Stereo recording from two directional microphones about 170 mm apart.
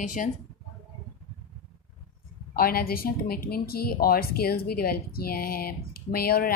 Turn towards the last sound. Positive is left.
turn(degrees=60)  # may be behind; listen again after turning